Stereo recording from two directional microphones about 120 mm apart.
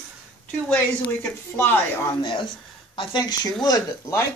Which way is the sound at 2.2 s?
40° left (ahead or behind).